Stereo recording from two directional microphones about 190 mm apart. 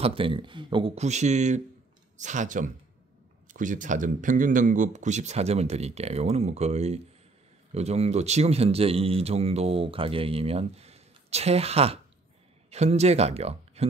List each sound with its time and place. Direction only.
0.0 s speech: 30° right (ahead or behind)